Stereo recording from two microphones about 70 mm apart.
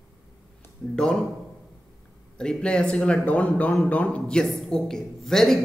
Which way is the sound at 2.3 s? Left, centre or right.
Centre.